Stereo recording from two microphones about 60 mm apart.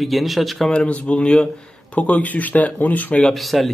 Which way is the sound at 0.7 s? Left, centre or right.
Centre.